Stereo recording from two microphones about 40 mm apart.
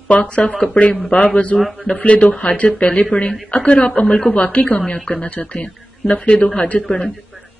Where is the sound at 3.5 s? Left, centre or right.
Left.